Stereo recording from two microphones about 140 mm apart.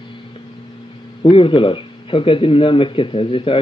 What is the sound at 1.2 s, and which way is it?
Speech, 40° left (ahead or behind).